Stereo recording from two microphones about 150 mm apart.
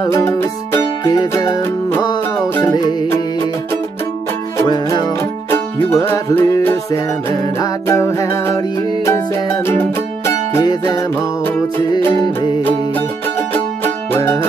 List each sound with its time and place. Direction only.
0.0 s music: 20° left (ahead or behind)
4.6 s music: 30° left (ahead or behind)
5.5 s music: 15° left (ahead or behind)
10.6 s music: 25° left (ahead or behind)
14.1 s music: 15° left (ahead or behind)